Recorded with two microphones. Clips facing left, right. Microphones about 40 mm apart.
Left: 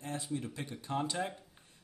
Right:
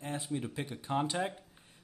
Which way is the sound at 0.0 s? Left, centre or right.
Right.